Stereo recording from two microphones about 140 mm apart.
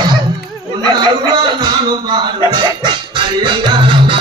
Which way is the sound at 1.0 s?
30° right (ahead or behind).